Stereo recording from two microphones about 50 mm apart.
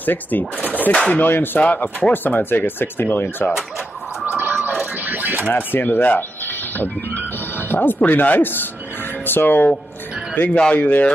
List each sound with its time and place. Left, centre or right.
0.0 s speech: left
4.3 s a sound: right
5.5 s speech: left